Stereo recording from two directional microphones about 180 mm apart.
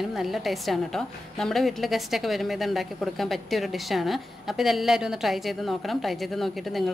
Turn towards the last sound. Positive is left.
turn(degrees=0)  # may be behind; listen again after turning